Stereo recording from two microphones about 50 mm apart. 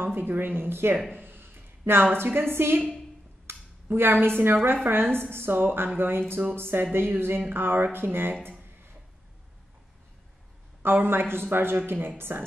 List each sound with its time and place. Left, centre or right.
0.0 s speech: right
1.1 s a sound: right
2.1 s speech: right
3.4 s dishes: right
4.8 s speech: right
10.8 s speech: right